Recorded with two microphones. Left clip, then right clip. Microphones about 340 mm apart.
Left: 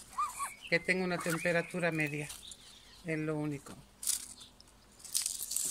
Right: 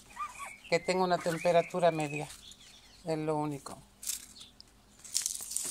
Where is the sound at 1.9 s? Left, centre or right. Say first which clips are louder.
Even; right.